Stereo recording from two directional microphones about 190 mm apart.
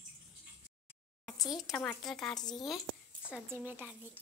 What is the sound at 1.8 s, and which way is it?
A woman's voice, 5° left (ahead or behind).